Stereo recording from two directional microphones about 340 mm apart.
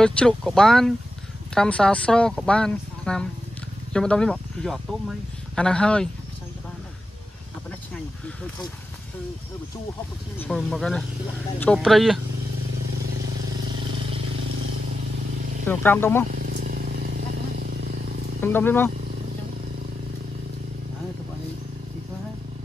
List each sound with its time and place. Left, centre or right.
0.0 s speech: centre
10.4 s speech: centre
15.6 s speech: centre
16.3 s vehicle: right
18.4 s speech: centre